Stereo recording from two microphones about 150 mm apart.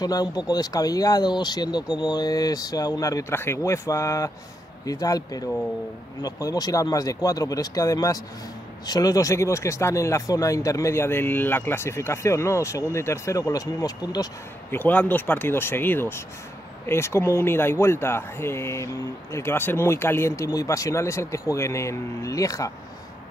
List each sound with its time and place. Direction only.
0.0 s speech: 25° left (ahead or behind)
14.8 s speech: 10° left (ahead or behind)